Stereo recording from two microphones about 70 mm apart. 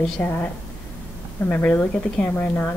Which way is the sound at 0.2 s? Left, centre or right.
Left.